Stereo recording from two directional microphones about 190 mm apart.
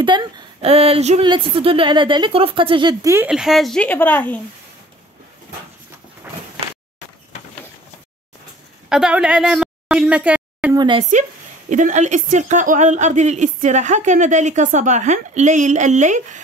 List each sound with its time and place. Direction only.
0.0 s speech: 25° right (ahead or behind)
3.3 s speech: centre (ahead or behind)
8.8 s a woman's voice: 5° right (ahead or behind)
10.7 s speech: 25° right (ahead or behind)
11.7 s a woman's voice: 40° right (ahead or behind)